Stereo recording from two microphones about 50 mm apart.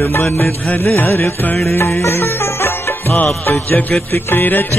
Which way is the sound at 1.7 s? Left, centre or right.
Left.